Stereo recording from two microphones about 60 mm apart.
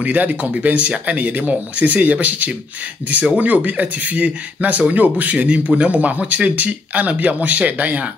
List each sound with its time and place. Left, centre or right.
0.0 s speech: right